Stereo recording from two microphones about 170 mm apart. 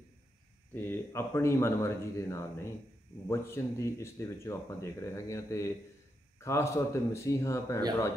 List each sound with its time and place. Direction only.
0.7 s speech: 15° left (ahead or behind)